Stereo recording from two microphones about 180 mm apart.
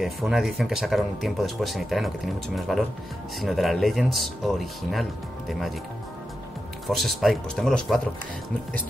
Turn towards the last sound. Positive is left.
turn(degrees=5)  # may be behind; listen again after turning